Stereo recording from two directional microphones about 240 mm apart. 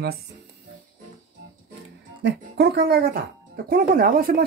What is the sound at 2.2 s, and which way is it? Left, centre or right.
Speech, right.